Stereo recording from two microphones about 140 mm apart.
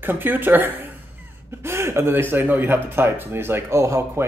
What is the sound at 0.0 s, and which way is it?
A woman's voice, 15° right (ahead or behind).